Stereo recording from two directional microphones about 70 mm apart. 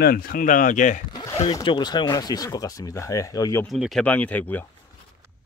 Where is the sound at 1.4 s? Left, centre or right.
Left.